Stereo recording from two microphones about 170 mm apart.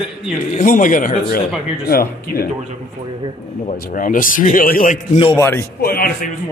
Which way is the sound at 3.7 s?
50° left (ahead or behind).